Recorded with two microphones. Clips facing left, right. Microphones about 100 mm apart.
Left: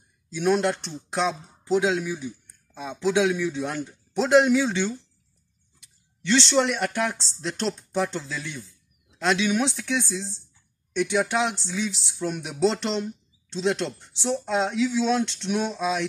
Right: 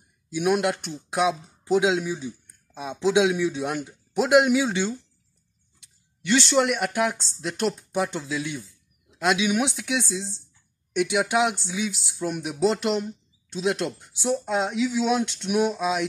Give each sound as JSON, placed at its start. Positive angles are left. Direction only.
{"t": 0.3, "sound": "speech", "side_deg": -10}